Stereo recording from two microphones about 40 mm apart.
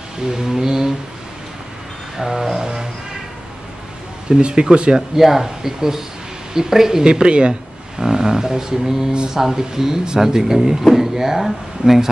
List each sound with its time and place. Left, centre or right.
0.2 s a sound: centre
2.1 s music: centre
4.3 s speech: right
5.1 s speech: centre
7.1 s speech: right
8.0 s speech: centre